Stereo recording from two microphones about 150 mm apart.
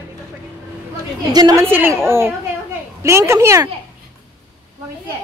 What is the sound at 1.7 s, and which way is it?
A woman's voice, 10° right (ahead or behind).